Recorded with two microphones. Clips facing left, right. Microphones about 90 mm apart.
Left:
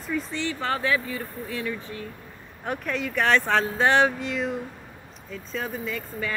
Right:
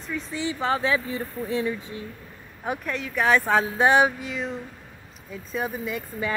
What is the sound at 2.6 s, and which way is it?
Speech, centre (ahead or behind).